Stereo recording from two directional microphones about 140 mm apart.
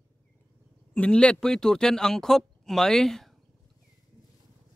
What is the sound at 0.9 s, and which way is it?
Speech, 5° left (ahead or behind).